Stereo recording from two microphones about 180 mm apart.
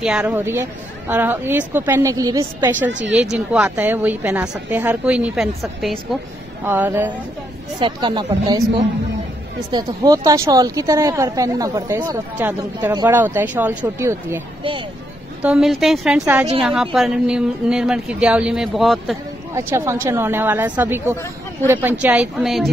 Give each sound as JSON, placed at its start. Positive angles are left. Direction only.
{"t": 0.0, "sound": "a woman's voice", "side_deg": -5}
{"t": 2.9, "sound": "speech", "side_deg": -90}
{"t": 3.3, "sound": "a woman's voice", "side_deg": -10}
{"t": 7.8, "sound": "a woman's voice", "side_deg": -25}
{"t": 15.4, "sound": "speech", "side_deg": -5}
{"t": 19.5, "sound": "a woman's voice", "side_deg": -15}